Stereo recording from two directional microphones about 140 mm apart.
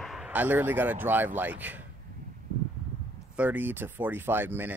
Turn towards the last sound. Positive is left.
turn(degrees=-15)  # may be behind; listen again after turning